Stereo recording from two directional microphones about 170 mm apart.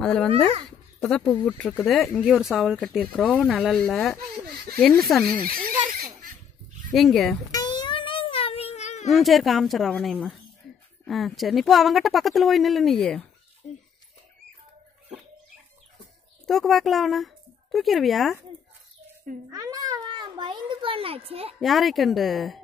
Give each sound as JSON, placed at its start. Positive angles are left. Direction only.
{"t": 0.0, "sound": "speech", "side_deg": 5}
{"t": 5.4, "sound": "speech", "side_deg": -60}
{"t": 5.9, "sound": "a sound", "side_deg": -50}
{"t": 6.9, "sound": "speech", "side_deg": 0}
{"t": 7.5, "sound": "a sound", "side_deg": 25}
{"t": 9.1, "sound": "speech", "side_deg": 0}
{"t": 16.4, "sound": "speech", "side_deg": 0}
{"t": 19.5, "sound": "a child's voice", "side_deg": -20}
{"t": 21.5, "sound": "speech", "side_deg": 0}